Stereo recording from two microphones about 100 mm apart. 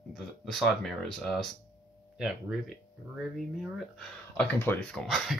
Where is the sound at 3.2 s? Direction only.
Centre (ahead or behind).